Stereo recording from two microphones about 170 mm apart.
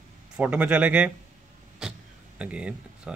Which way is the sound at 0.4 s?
10° right (ahead or behind).